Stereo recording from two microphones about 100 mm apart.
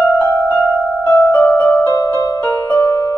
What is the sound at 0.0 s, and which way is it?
Music, 15° left (ahead or behind).